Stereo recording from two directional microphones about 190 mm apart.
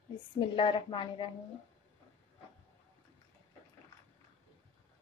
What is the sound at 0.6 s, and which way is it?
Speech, 25° left (ahead or behind).